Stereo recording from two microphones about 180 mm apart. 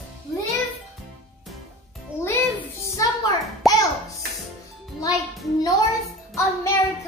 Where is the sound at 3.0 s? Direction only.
20° left (ahead or behind).